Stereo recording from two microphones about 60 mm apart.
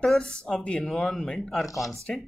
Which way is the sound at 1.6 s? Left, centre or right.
Left.